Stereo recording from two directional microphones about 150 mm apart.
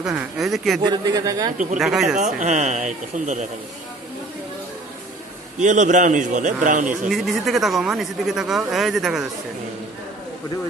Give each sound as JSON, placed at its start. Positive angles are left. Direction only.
{"t": 0.0, "sound": "speech", "side_deg": -5}
{"t": 0.8, "sound": "a man's voice", "side_deg": -25}
{"t": 1.8, "sound": "speech", "side_deg": 0}
{"t": 2.1, "sound": "speech", "side_deg": -55}
{"t": 5.6, "sound": "a man's voice", "side_deg": -55}
{"t": 7.1, "sound": "speech", "side_deg": 0}